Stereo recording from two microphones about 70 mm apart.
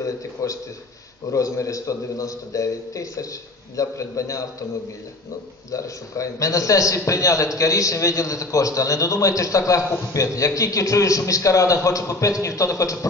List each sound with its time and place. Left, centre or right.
0.0 s a man's voice: left
5.7 s a man's voice: left